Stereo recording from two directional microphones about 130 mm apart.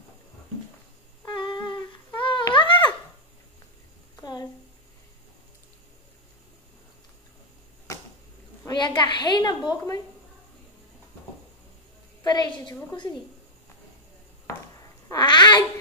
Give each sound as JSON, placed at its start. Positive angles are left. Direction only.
{"t": 1.3, "sound": "humming", "side_deg": 40}
{"t": 2.1, "sound": "a sound", "side_deg": 40}
{"t": 4.2, "sound": "a sound", "side_deg": 35}
{"t": 8.6, "sound": "a woman's voice", "side_deg": 35}
{"t": 12.2, "sound": "a woman's voice", "side_deg": 30}
{"t": 14.8, "sound": "babbling", "side_deg": 30}